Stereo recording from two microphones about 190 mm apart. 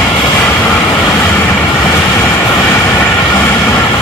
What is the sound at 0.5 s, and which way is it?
Vehicle, 10° left (ahead or behind).